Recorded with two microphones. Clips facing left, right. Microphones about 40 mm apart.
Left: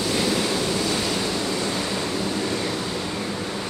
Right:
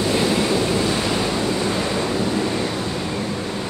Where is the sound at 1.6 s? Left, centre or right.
Right.